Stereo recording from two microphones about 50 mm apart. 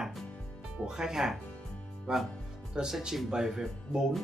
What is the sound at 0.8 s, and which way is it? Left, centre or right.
Speech, centre.